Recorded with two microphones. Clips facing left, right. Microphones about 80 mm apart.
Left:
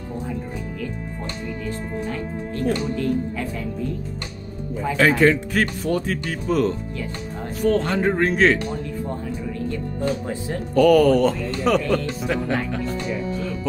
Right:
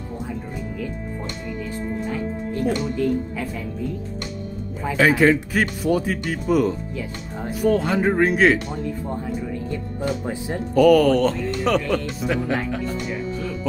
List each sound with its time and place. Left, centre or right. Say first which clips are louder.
2.0 s music: right 2 dB; centre
4.8 s speech: even; centre
9.7 s speech: left 3 dB; centre
10.7 s speech: even; centre